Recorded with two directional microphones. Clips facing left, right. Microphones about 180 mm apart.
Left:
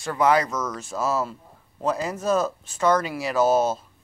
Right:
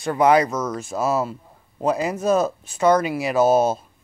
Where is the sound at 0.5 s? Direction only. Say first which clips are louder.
Right 4 dB; 30° right (ahead or behind).